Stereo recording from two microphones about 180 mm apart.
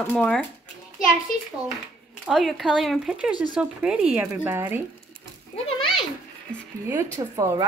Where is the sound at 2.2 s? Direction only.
Centre (ahead or behind).